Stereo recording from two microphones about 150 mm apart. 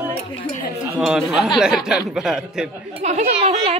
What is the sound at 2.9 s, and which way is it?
Speech, 50° right (ahead or behind).